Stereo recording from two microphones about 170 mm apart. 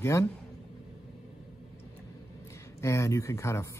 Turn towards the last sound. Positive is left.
turn(degrees=15)  # may be behind; listen again after turning